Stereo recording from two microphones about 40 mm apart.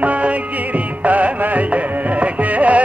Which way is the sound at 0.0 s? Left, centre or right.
Right.